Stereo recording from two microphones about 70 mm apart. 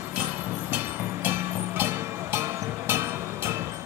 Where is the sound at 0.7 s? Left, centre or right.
Right.